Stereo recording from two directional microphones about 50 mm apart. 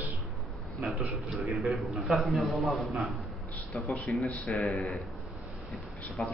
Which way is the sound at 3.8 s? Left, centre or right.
Left.